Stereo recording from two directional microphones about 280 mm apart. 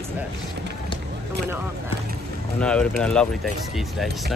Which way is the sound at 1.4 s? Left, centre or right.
Centre.